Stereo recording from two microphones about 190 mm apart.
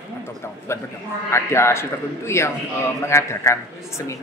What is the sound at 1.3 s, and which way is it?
Speech, 15° left (ahead or behind).